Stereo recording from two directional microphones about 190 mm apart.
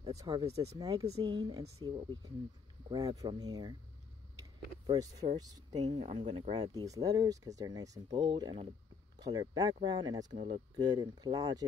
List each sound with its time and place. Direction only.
0.2 s speech: 20° right (ahead or behind)
0.5 s speech: 35° right (ahead or behind)
0.7 s speech: 20° right (ahead or behind)
4.8 s speech: 25° right (ahead or behind)